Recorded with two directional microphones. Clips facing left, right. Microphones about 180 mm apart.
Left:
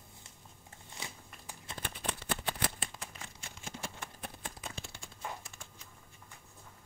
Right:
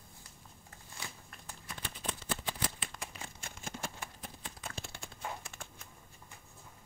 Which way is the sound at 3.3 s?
50° right (ahead or behind).